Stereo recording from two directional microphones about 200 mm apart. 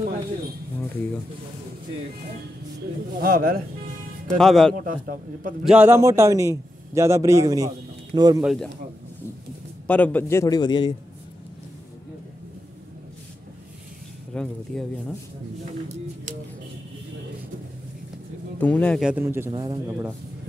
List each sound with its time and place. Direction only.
3.2 s speech: 45° right (ahead or behind)
4.4 s speech: centre (ahead or behind)
5.7 s a man's voice: 10° right (ahead or behind)
8.4 s speech: centre (ahead or behind)
9.8 s a man's voice: 10° left (ahead or behind)
14.3 s speech: 5° left (ahead or behind)
18.6 s a man's voice: 5° left (ahead or behind)
19.0 s speech: 10° right (ahead or behind)